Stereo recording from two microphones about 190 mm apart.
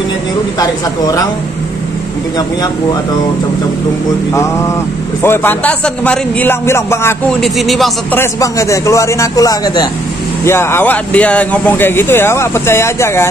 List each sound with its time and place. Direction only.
0.6 s a man's voice: 20° left (ahead or behind)
5.2 s speech: 10° left (ahead or behind)
7.4 s speech: centre (ahead or behind)
8.2 s speech: 15° left (ahead or behind)